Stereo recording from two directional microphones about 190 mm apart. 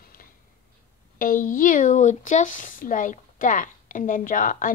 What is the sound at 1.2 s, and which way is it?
Speech, 45° left (ahead or behind).